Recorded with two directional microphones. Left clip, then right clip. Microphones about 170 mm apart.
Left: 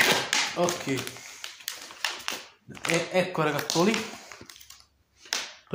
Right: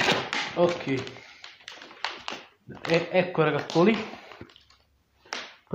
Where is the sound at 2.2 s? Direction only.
30° right (ahead or behind).